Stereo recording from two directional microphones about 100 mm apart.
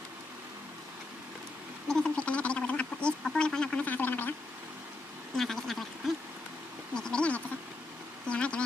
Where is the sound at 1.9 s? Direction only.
10° left (ahead or behind).